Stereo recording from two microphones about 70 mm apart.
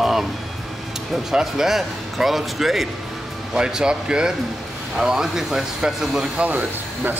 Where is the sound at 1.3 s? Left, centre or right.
Centre.